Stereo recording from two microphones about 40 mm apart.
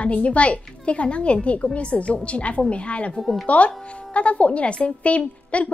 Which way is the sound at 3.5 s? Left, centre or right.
Left.